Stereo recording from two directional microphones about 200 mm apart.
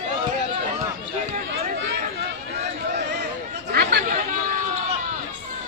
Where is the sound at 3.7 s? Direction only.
50° right (ahead or behind).